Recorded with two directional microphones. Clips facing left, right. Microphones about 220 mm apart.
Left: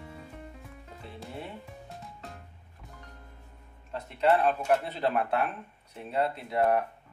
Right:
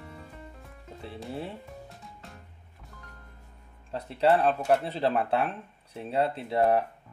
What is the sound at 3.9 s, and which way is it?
Speech, 30° right (ahead or behind).